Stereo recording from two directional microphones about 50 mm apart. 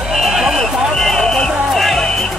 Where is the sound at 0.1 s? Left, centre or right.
Centre.